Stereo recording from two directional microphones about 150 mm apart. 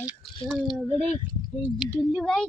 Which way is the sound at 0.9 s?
45° left (ahead or behind).